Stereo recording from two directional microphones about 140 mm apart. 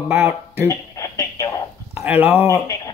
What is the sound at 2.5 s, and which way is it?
Speech, 20° left (ahead or behind).